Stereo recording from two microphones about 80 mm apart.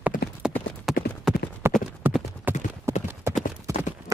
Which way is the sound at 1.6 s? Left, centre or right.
Right.